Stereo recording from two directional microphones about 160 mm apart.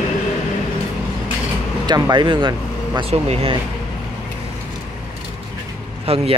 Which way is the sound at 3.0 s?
40° right (ahead or behind).